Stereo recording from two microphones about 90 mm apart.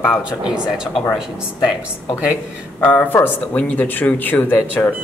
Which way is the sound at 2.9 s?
20° left (ahead or behind).